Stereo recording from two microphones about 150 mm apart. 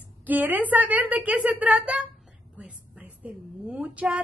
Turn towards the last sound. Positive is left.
turn(degrees=-5)  # may be behind; listen again after turning